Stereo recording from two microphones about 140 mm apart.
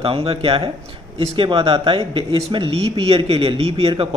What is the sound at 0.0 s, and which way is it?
Speech, 45° right (ahead or behind).